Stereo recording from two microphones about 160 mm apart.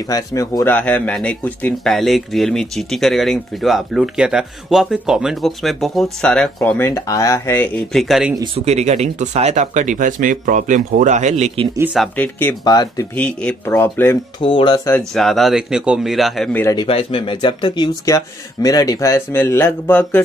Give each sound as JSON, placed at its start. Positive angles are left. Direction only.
{"t": 0.1, "sound": "speech", "side_deg": 25}
{"t": 0.7, "sound": "speech", "side_deg": 10}
{"t": 7.9, "sound": "speech", "side_deg": 0}
{"t": 8.5, "sound": "speech", "side_deg": -45}
{"t": 12.2, "sound": "speech", "side_deg": 10}
{"t": 12.6, "sound": "speech", "side_deg": 25}
{"t": 13.1, "sound": "speech", "side_deg": 10}
{"t": 14.4, "sound": "speech", "side_deg": 30}
{"t": 15.1, "sound": "speech", "side_deg": 0}
{"t": 16.7, "sound": "speech", "side_deg": 35}